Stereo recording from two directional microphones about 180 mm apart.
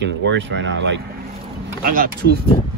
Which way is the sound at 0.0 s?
75° right (ahead or behind).